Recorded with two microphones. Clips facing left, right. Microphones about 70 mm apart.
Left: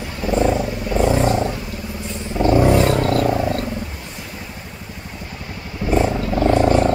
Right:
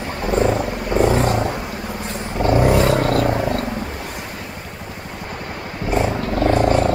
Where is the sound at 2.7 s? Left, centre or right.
Right.